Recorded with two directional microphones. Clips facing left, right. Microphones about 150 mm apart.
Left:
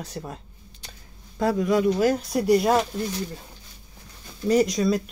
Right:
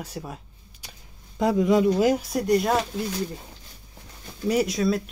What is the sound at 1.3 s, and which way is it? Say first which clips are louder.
Speech: right 2 dB; 20° right (ahead or behind).